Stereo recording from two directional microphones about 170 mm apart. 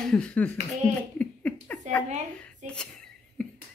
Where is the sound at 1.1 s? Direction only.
10° left (ahead or behind).